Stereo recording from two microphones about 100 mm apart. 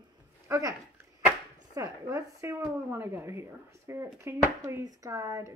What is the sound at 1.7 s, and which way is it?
Speech, 35° right (ahead or behind).